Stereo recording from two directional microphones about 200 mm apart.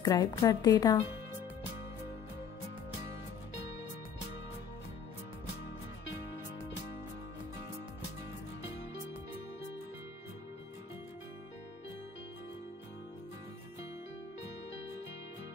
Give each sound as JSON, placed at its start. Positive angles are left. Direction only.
{"t": 0.0, "sound": "a woman's voice", "side_deg": 20}